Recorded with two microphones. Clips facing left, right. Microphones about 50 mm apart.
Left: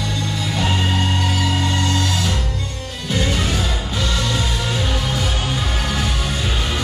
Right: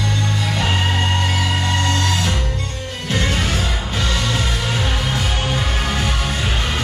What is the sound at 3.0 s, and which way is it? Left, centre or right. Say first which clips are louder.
Music: even; right.